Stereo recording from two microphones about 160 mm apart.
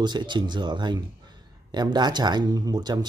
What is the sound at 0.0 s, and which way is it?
Speech, 30° right (ahead or behind).